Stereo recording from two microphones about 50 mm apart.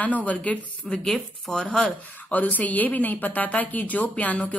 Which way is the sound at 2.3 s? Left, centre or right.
Left.